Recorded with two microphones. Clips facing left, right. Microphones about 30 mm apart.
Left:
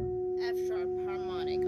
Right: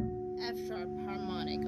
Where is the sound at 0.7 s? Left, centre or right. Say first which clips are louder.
Left 6 dB; centre.